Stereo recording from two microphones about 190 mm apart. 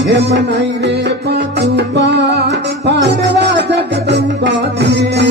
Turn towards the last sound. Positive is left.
turn(degrees=-65)  # may be behind; listen again after turning